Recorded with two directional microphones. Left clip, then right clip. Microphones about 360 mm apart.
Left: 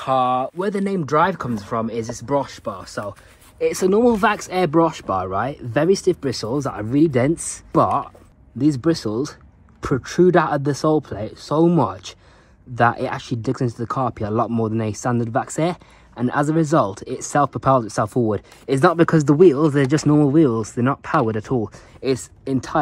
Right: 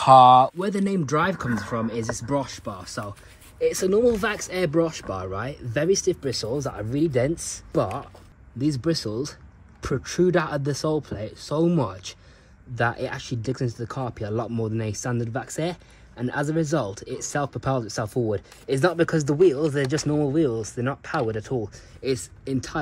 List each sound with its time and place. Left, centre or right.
0.0 s speech: centre
0.6 s speech: centre
3.6 s speech: centre